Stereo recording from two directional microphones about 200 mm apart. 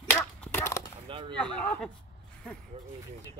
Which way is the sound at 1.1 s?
25° right (ahead or behind).